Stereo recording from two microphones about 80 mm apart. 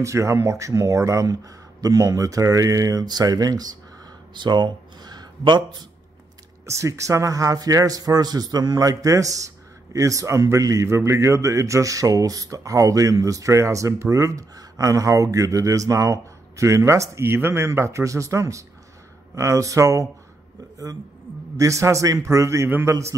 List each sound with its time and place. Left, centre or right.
0.0 s speech: right
3.1 s speech: right
6.6 s a man's voice: right